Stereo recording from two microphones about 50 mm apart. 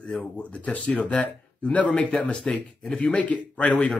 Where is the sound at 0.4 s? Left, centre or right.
Left.